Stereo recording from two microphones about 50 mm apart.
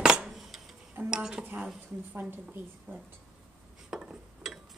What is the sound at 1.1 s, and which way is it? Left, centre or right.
Speech, centre.